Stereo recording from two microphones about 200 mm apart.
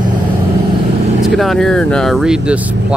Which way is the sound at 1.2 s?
Centre (ahead or behind).